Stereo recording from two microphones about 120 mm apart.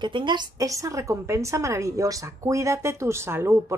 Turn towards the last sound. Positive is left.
turn(degrees=-20)  # may be behind; listen again after turning